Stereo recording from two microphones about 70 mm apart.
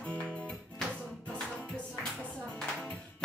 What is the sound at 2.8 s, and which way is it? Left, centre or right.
Music, centre.